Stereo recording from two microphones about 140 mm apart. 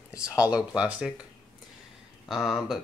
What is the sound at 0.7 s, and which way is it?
Speech, 5° right (ahead or behind).